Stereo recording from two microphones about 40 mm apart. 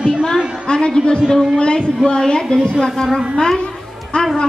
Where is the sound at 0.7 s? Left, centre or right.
Left.